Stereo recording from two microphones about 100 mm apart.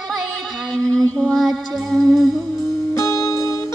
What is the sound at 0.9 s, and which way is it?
Music, 5° left (ahead or behind).